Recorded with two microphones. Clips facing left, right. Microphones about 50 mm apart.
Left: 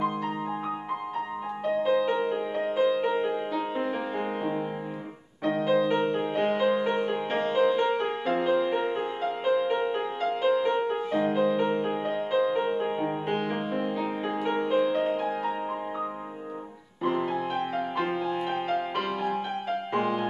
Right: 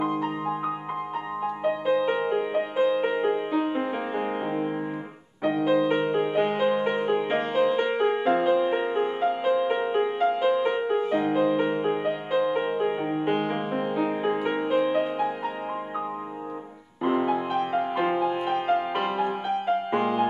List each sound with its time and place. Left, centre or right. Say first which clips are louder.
1.6 s music: even; centre
17.0 s music: right 3 dB; centre